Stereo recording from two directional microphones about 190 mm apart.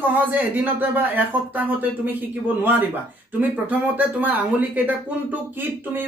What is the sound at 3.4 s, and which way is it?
Speech, 10° right (ahead or behind).